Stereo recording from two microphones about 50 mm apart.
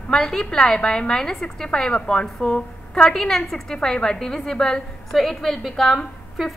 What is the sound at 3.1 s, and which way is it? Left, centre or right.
A woman's voice, centre.